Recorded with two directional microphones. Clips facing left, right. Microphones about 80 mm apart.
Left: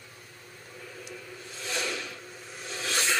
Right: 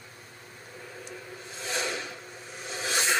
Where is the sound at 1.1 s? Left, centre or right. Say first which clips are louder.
Right 1 dB; right.